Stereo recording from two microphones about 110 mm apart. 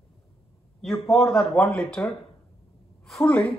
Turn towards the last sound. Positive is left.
turn(degrees=5)  # may be behind; listen again after turning